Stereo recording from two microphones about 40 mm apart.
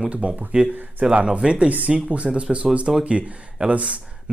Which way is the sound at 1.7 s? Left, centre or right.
Right.